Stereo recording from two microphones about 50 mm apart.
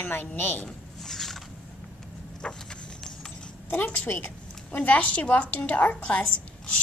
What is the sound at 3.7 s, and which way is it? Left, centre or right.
Speech, left.